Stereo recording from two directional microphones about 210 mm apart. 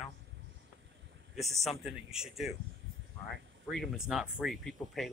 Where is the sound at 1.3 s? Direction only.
Centre (ahead or behind).